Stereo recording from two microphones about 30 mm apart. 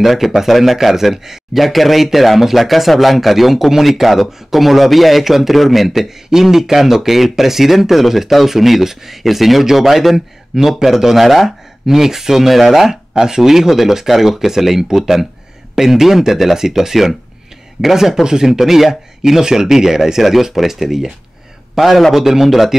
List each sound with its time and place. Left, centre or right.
0.0 s speech: centre
13.1 s speech: right; by 22.8 s centre